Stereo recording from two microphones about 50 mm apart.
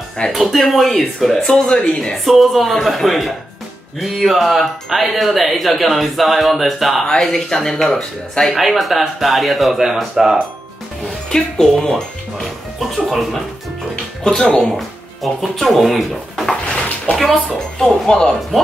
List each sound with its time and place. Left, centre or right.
0.3 s speech: centre
1.6 s speech: centre
2.2 s speech: centre
7.1 s speech: centre
8.5 s speech: centre
11.2 s speech: centre
14.2 s speech: centre
15.4 s speech: centre
16.6 s bathtub: left
17.7 s speech: centre